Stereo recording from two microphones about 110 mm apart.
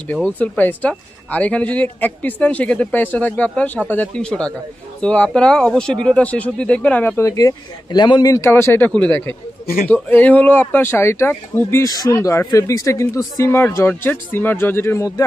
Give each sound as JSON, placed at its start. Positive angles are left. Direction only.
{"t": 0.1, "sound": "speech", "side_deg": 15}
{"t": 7.2, "sound": "speech", "side_deg": 30}
{"t": 8.3, "sound": "speech", "side_deg": 25}